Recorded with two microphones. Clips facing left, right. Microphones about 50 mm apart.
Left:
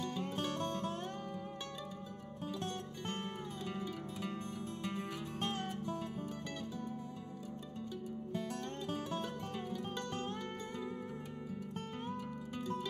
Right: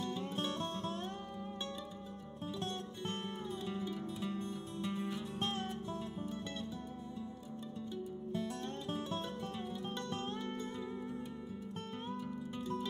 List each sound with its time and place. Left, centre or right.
4.3 s music: left